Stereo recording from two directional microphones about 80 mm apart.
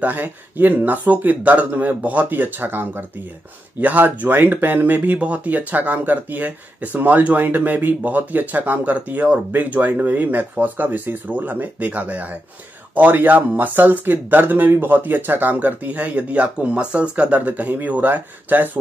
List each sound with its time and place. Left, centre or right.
0.0 s speech: right